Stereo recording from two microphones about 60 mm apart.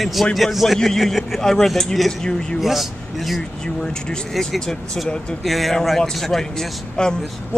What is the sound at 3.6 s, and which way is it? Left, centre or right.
A man's voice, centre.